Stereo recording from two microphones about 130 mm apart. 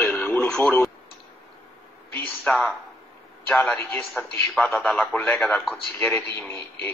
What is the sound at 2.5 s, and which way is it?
A man's voice, 10° left (ahead or behind).